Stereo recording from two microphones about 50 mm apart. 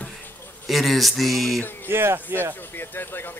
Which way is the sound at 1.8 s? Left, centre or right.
Right.